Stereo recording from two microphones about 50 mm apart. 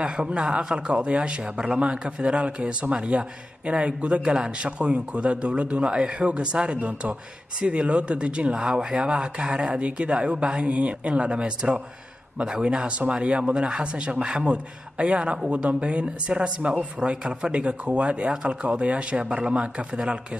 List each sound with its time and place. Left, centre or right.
0.0 s speech: centre